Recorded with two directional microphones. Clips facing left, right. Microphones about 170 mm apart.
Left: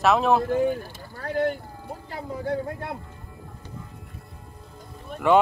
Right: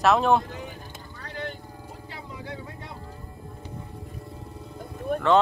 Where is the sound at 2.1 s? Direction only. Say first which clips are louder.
Left 11 dB; 45° left (ahead or behind).